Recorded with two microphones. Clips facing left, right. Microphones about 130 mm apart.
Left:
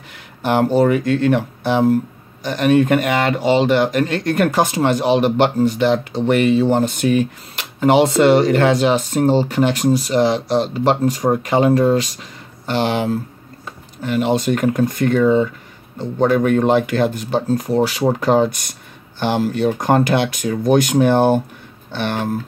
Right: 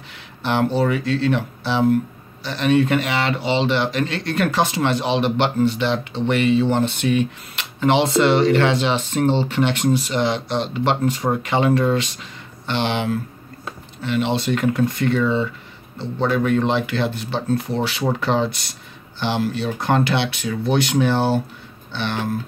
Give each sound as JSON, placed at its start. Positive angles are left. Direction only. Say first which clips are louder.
{"t": 0.1, "sound": "speech", "louder": "left 4 dB", "side_deg": 45}